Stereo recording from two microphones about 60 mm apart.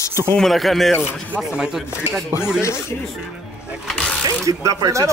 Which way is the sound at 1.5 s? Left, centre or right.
Centre.